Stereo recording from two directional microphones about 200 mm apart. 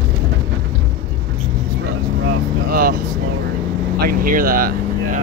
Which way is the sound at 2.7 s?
45° right (ahead or behind).